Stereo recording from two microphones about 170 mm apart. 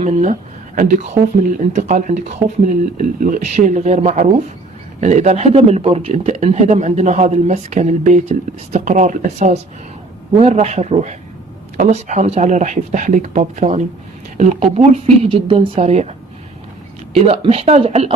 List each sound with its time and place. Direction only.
0.0 s speech: 45° right (ahead or behind)
17.1 s speech: 35° right (ahead or behind)